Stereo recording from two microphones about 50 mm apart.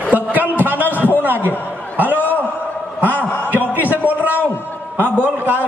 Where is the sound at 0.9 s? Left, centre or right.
Left.